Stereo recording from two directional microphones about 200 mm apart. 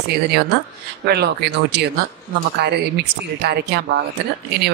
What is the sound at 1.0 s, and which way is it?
Speech, 55° right (ahead or behind).